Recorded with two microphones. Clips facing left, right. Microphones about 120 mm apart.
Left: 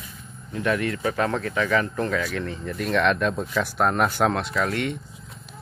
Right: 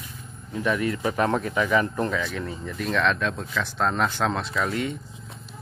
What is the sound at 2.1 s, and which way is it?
Speech, 5° left (ahead or behind).